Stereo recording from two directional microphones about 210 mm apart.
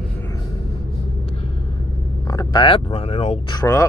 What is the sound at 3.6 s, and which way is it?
Speech, 15° left (ahead or behind).